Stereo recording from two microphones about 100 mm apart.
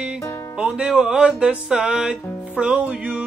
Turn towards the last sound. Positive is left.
turn(degrees=-10)  # may be behind; listen again after turning